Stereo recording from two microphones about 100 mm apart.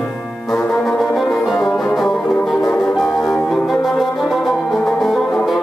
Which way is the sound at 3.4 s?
Centre (ahead or behind).